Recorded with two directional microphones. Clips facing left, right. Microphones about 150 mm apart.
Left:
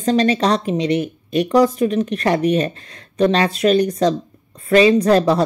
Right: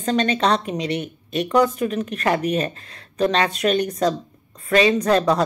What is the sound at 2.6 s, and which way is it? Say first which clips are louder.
Speech: left 4 dB; 35° right (ahead or behind).